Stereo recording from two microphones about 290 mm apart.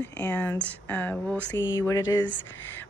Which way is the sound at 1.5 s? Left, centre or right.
Left.